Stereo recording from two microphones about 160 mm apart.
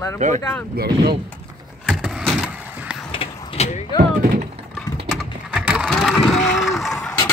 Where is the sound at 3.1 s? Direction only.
35° left (ahead or behind).